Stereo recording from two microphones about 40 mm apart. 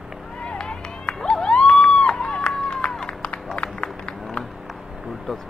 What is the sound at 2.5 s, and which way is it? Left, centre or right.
Run, left.